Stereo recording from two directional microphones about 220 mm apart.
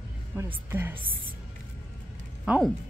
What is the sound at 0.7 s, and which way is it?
Speech, 10° right (ahead or behind).